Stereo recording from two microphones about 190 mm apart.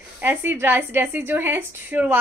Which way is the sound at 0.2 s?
10° right (ahead or behind).